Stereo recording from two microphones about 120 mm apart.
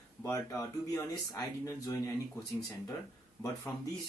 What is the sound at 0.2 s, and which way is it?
Speech, 25° left (ahead or behind).